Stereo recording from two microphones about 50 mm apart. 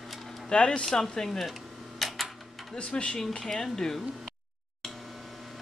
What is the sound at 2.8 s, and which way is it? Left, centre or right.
Speech, left.